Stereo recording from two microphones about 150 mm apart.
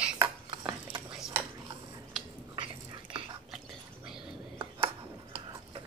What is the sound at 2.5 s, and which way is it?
Biting, 30° right (ahead or behind).